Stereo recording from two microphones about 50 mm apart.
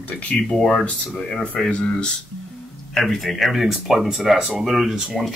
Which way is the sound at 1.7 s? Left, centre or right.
Left.